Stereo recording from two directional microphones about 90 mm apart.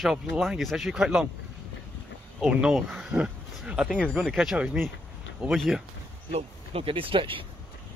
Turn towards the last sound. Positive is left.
turn(degrees=-80)